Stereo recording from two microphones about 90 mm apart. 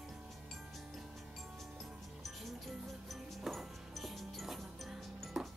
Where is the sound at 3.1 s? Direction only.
Centre (ahead or behind).